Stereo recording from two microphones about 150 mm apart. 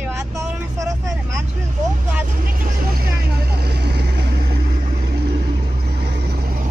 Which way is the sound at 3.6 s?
90° right.